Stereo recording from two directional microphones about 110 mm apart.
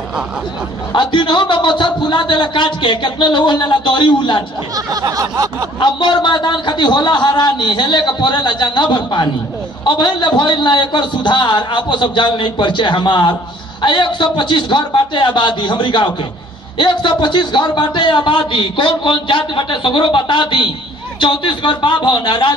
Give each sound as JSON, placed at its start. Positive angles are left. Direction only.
{"t": 0.9, "sound": "a man's voice", "side_deg": 45}
{"t": 4.7, "sound": "a sound", "side_deg": -35}
{"t": 5.8, "sound": "a man's voice", "side_deg": 45}